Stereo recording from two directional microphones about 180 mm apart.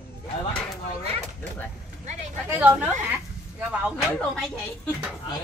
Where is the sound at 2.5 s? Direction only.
10° right (ahead or behind).